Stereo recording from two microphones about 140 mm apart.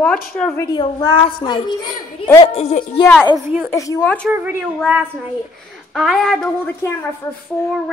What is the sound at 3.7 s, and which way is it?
Speech, 20° left (ahead or behind).